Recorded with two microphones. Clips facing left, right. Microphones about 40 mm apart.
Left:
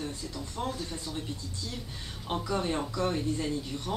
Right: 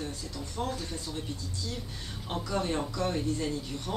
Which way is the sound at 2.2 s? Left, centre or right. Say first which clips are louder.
Left 1 dB; centre.